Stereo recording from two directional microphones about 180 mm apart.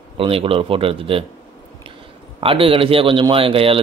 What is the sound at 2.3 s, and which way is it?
A man's voice, 30° right (ahead or behind).